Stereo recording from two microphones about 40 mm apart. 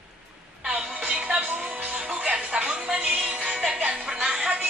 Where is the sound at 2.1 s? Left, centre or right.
Right.